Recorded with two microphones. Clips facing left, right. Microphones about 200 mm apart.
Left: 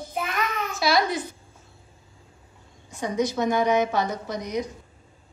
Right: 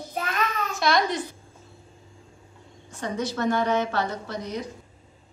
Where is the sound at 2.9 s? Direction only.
15° left (ahead or behind).